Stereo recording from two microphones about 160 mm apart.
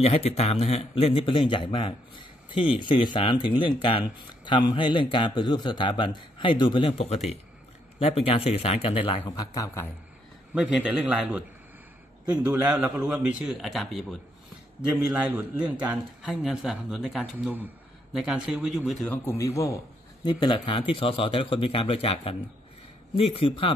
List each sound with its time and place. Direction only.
0.0 s speech: 40° left (ahead or behind)
9.4 s a man's voice: 20° left (ahead or behind)
10.5 s a man's voice: 5° right (ahead or behind)
19.2 s a man's voice: 15° left (ahead or behind)
20.2 s speech: 30° left (ahead or behind)